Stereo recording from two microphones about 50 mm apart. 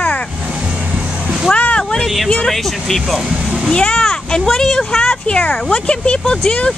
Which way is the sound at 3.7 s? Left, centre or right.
Centre.